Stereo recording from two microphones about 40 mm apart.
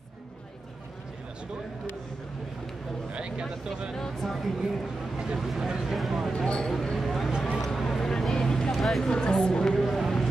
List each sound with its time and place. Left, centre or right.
3.1 s speech: right
4.2 s speech: centre
4.6 s speech: centre
6.3 s speech: left
6.6 s speech: centre
7.6 s vehicle: centre
8.7 s speech: centre
9.3 s a woman's voice: centre
9.8 s a sound: centre